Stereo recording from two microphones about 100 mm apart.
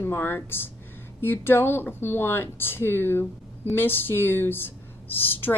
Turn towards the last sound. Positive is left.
turn(degrees=20)  # may be behind; listen again after turning